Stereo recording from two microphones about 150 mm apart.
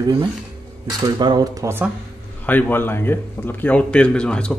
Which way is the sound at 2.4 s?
10° left (ahead or behind).